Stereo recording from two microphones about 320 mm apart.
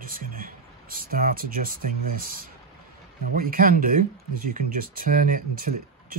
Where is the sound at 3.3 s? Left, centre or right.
Right.